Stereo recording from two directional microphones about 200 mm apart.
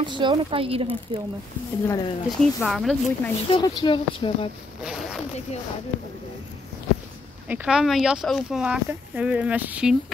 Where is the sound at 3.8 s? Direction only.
25° left (ahead or behind).